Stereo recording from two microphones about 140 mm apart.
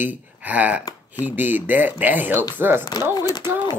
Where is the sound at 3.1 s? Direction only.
30° left (ahead or behind).